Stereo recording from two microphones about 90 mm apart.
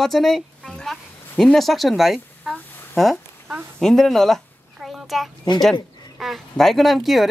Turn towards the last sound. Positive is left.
turn(degrees=0)  # may be behind; listen again after turning